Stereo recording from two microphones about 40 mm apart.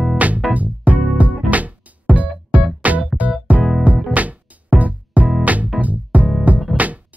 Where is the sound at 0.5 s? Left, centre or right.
Right.